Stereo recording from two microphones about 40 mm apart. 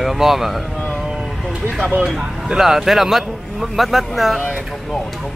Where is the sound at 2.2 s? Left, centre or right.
Centre.